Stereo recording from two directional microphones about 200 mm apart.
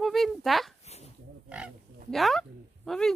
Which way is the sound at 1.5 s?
Centre (ahead or behind).